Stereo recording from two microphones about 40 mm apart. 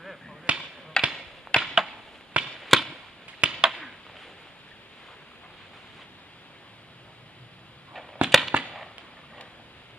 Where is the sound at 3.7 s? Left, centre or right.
Centre.